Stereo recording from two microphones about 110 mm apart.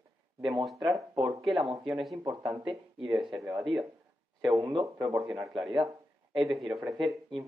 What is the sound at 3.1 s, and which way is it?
Speech, 5° right (ahead or behind).